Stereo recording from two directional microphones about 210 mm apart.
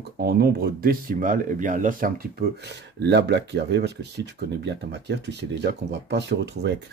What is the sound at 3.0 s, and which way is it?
Speech, 55° right (ahead or behind).